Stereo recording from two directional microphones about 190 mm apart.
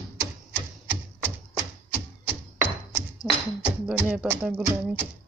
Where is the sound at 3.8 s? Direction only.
5° right (ahead or behind).